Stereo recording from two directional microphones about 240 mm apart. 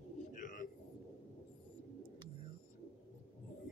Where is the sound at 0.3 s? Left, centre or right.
Left.